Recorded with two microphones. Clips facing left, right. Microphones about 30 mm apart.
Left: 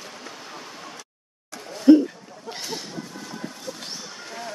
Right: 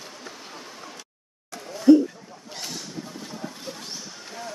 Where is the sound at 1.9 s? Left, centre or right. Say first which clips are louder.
Left 1 dB; left.